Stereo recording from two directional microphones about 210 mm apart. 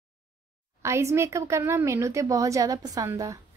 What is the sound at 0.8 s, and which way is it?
Speech, 15° right (ahead or behind).